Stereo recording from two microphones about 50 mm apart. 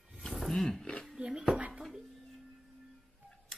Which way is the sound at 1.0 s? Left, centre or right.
Centre.